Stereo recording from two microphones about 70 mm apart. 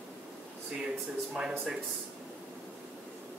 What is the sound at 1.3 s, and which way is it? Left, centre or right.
Speech, centre.